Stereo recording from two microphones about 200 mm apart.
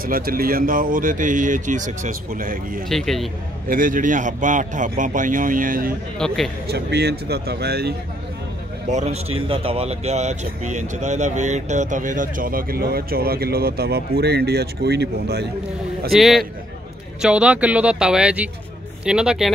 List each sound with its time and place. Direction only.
0.0 s a man's voice: 45° right (ahead or behind)
2.9 s speech: centre (ahead or behind)
3.6 s a man's voice: 45° right (ahead or behind)
6.1 s speech: centre (ahead or behind)
6.7 s a man's voice: 55° right (ahead or behind)
8.9 s a man's voice: 30° right (ahead or behind); by 15.4 s 55° right (ahead or behind)
16.1 s speech: centre (ahead or behind)